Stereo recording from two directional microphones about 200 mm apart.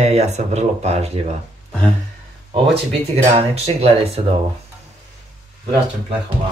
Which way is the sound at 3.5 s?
30° right (ahead or behind).